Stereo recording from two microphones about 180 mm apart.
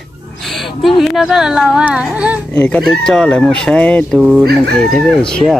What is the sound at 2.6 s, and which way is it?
Speech, 5° left (ahead or behind).